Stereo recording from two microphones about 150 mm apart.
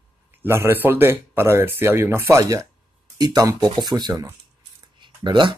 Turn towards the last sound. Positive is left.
turn(degrees=-30)  # may be behind; listen again after turning